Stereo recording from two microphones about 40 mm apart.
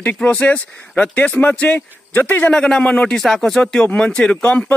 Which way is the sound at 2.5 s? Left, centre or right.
Centre.